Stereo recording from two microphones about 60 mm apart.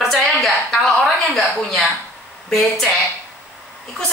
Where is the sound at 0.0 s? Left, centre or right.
Centre.